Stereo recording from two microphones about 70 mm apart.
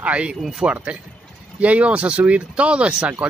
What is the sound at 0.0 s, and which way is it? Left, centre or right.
Speech, centre.